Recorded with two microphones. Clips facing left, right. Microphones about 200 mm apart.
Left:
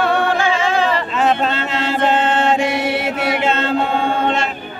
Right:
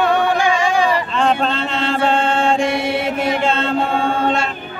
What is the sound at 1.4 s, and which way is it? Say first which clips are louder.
Music: even; 5° left (ahead or behind).